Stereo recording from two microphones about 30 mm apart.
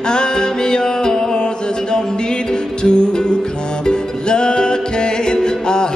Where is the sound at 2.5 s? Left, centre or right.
Left.